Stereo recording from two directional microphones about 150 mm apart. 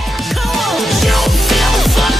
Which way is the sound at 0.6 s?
Centre (ahead or behind).